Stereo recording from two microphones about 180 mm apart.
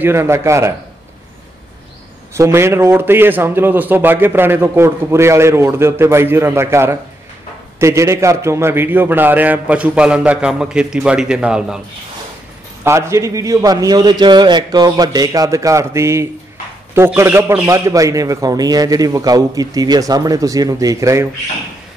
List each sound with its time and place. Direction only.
0.0 s a man's voice: 15° right (ahead or behind)
2.3 s a man's voice: 15° right (ahead or behind)
12.8 s a man's voice: 15° right (ahead or behind)